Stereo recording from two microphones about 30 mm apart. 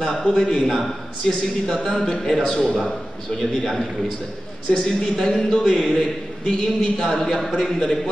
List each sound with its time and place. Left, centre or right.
0.0 s a man's voice: left; by 3.8 s centre
5.0 s a man's voice: left